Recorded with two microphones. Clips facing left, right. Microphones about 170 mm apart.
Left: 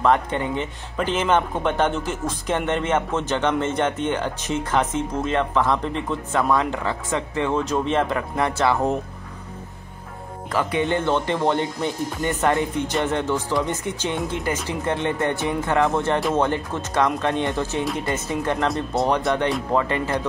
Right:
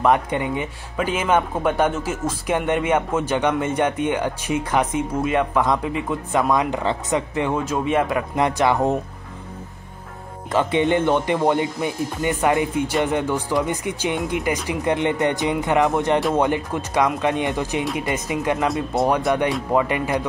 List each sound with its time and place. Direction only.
0.0 s speech: 15° right (ahead or behind)
6.8 s speech: 25° right (ahead or behind)
7.2 s speech: 15° right (ahead or behind)
10.5 s speech: 25° right (ahead or behind)